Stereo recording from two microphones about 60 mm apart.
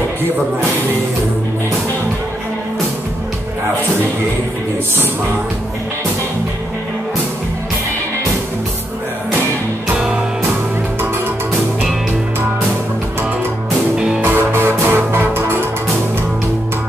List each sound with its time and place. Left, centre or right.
9.9 s music: centre
13.9 s music: centre
14.2 s music: right